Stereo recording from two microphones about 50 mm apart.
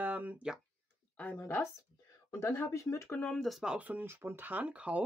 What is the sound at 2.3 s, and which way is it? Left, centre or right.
Speech, left.